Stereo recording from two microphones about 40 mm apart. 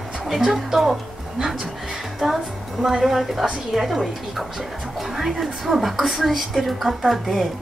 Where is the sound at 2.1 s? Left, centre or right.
Centre.